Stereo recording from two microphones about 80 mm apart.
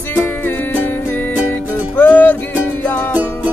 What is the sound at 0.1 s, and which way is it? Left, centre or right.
Music, left.